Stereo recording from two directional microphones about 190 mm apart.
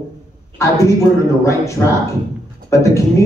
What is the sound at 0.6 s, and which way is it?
Speech, 15° left (ahead or behind).